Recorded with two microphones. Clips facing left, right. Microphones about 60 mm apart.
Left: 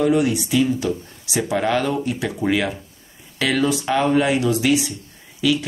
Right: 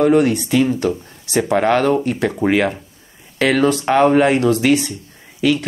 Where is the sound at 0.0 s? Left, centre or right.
Right.